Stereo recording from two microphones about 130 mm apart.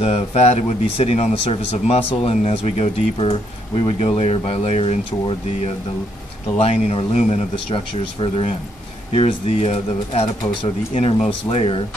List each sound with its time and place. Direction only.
0.0 s speech: 55° left (ahead or behind)
6.6 s speech: 50° left (ahead or behind)